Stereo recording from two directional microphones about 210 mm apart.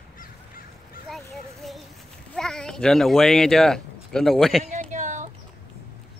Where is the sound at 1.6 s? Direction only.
Centre (ahead or behind).